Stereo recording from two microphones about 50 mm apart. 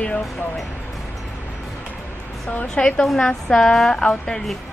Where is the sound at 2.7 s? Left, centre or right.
Centre.